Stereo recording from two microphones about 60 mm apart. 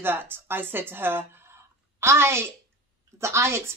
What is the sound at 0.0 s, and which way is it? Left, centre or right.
A woman's voice, right.